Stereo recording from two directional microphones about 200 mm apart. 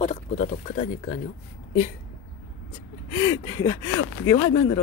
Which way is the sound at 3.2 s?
20° left (ahead or behind).